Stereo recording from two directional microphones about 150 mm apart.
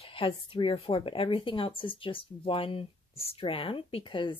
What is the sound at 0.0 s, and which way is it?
A woman's voice, 35° left (ahead or behind).